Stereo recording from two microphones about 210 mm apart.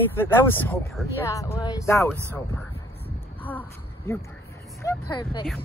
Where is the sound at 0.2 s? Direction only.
10° left (ahead or behind).